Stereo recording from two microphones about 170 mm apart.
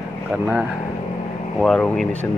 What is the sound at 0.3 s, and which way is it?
Speech, 5° right (ahead or behind).